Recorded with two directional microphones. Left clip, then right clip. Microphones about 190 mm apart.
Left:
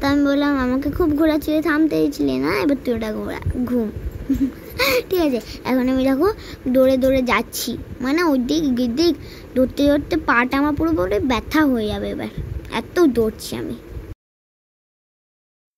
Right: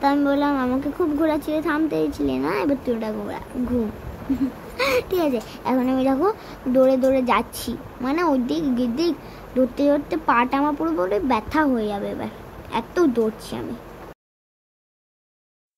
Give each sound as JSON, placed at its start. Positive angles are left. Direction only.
{"t": 0.0, "sound": "a child's voice", "side_deg": 30}
{"t": 4.7, "sound": "a child's voice", "side_deg": 35}